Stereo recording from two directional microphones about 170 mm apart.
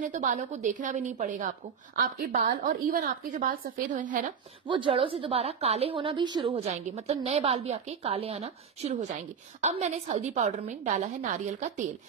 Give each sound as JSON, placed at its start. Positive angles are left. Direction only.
{"t": 0.0, "sound": "a woman's voice", "side_deg": -50}
{"t": 4.6, "sound": "a woman's voice", "side_deg": -30}